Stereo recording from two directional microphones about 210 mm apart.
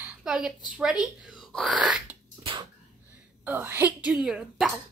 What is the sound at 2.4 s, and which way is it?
Dog, 20° right (ahead or behind).